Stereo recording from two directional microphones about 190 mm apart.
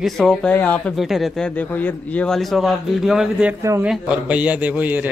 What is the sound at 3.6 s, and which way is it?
A man's voice, 15° right (ahead or behind).